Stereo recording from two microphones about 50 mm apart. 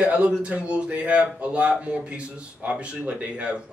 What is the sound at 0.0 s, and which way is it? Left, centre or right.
Speech, right.